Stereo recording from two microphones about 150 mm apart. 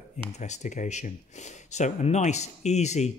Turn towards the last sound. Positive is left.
turn(degrees=50)  # may be behind; listen again after turning